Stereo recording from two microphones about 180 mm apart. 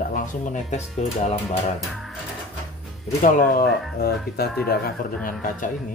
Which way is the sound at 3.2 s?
50° left (ahead or behind).